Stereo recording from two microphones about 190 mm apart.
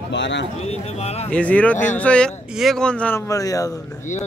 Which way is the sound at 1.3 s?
5° left (ahead or behind).